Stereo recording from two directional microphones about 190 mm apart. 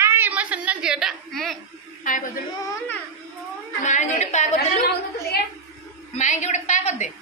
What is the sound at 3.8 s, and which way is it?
Speech, 40° left (ahead or behind).